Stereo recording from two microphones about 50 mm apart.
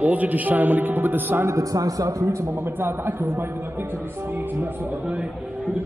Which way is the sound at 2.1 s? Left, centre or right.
Right.